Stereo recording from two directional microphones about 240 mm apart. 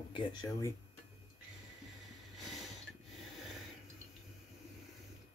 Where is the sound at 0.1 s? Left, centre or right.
Centre.